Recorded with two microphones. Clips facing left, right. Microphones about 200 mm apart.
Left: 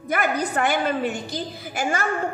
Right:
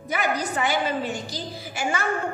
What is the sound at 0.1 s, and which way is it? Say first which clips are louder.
Music: left 3 dB; 55° left (ahead or behind).